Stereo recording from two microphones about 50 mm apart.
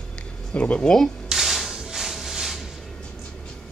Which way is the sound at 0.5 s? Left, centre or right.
Left.